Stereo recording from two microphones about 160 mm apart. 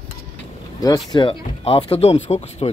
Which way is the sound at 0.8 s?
25° left (ahead or behind).